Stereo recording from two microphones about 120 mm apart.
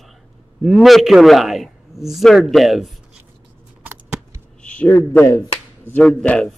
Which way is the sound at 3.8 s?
15° right (ahead or behind).